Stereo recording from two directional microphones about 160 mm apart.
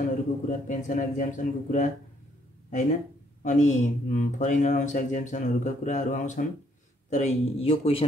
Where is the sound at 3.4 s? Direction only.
50° left (ahead or behind).